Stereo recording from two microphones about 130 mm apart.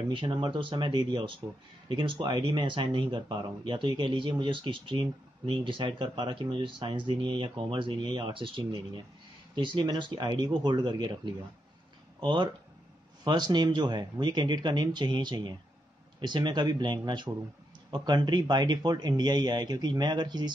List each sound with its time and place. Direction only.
0.1 s speech: 40° right (ahead or behind)